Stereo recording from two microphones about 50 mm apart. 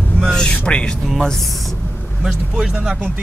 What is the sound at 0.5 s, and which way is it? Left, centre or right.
Speech, left.